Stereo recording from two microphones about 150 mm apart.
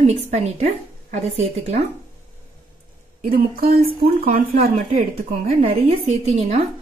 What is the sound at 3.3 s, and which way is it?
A woman's voice, 75° right (ahead or behind).